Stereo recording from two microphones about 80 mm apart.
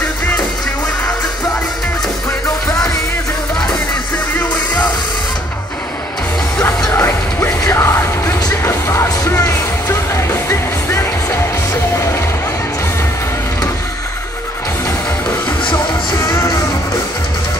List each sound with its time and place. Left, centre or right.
7.0 s music: left